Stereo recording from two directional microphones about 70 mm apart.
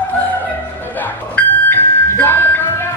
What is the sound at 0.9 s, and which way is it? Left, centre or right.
Music, left.